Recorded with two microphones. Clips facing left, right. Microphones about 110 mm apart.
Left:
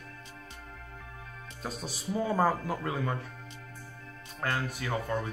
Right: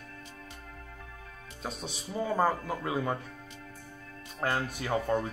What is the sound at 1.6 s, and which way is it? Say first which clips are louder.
Speech: even; centre (ahead or behind).